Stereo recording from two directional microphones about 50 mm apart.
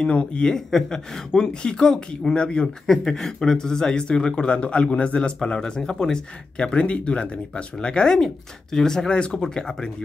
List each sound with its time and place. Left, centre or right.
0.0 s speech: left